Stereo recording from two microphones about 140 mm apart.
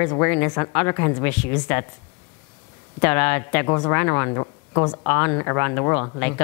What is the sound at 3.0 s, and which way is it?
Speech, 15° left (ahead or behind).